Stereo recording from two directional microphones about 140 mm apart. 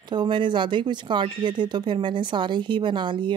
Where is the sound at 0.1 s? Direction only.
35° right (ahead or behind).